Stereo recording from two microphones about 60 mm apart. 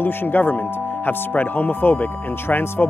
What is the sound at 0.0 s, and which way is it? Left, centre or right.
Speech, left.